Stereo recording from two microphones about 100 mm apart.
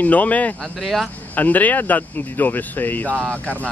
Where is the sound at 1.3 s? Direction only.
15° left (ahead or behind).